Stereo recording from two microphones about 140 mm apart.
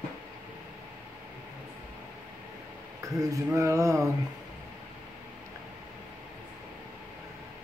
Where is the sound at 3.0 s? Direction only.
25° right (ahead or behind).